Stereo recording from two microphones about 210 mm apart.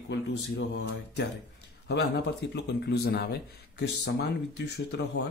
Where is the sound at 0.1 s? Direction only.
55° left (ahead or behind).